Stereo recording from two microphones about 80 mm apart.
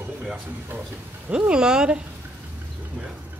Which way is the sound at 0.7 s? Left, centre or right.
Right.